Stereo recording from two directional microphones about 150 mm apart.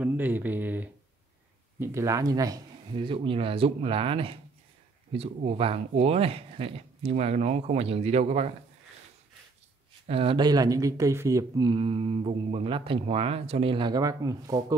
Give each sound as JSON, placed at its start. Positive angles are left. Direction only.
{"t": 0.0, "sound": "speech", "side_deg": -10}
{"t": 10.0, "sound": "speech", "side_deg": -40}